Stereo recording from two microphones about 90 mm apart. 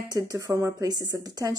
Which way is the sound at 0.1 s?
45° right (ahead or behind).